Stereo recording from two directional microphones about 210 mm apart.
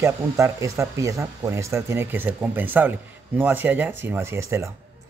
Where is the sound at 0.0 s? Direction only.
15° right (ahead or behind).